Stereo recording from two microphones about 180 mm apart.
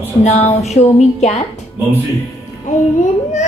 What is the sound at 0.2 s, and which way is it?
A child's voice, 40° left (ahead or behind).